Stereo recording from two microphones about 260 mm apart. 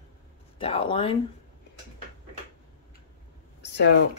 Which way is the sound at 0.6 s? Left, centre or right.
Left.